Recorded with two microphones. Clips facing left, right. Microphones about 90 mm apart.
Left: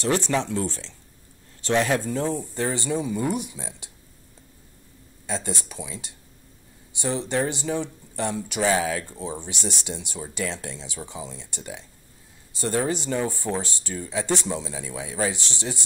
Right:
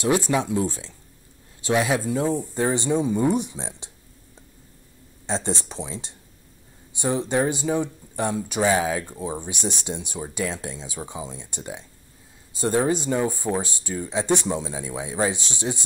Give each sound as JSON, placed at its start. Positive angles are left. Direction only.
{"t": 0.0, "sound": "speech", "side_deg": -10}
{"t": 5.2, "sound": "speech", "side_deg": -25}